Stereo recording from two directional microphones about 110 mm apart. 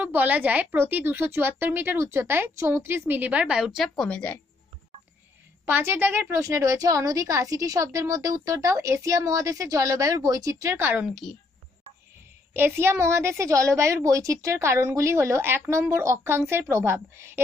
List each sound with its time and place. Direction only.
0.0 s a woman's voice: 15° right (ahead or behind); by 4.3 s 5° left (ahead or behind)
5.7 s a woman's voice: 20° right (ahead or behind)
11.1 s a woman's voice: 5° left (ahead or behind)
12.5 s a woman's voice: 20° right (ahead or behind)